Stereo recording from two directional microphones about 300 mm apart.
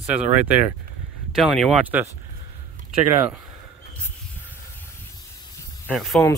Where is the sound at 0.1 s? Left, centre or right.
Centre.